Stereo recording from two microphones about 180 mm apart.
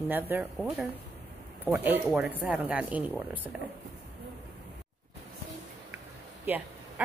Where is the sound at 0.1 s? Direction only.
10° right (ahead or behind).